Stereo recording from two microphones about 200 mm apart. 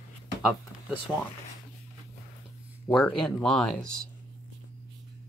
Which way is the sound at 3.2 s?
5° left (ahead or behind).